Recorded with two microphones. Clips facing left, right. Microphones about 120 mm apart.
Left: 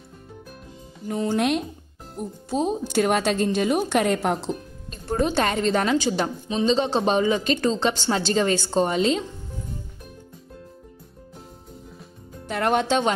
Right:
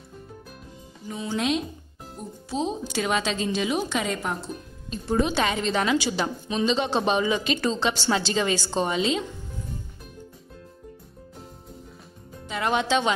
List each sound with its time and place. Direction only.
1.0 s a woman's voice: 60° left (ahead or behind); by 4.6 s 85° left
4.9 s a woman's voice: 50° left (ahead or behind)
6.5 s a woman's voice: 35° left (ahead or behind)
12.4 s speech: 55° left (ahead or behind)